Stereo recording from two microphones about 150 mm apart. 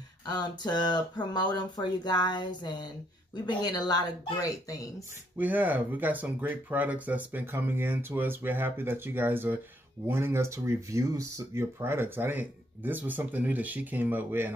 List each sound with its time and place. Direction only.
0.2 s speech: 30° left (ahead or behind)
5.4 s speech: 10° right (ahead or behind)